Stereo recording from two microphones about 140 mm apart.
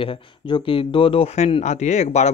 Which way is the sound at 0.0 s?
40° left (ahead or behind).